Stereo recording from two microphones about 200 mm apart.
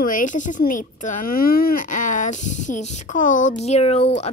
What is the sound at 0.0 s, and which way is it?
Speech, 40° left (ahead or behind).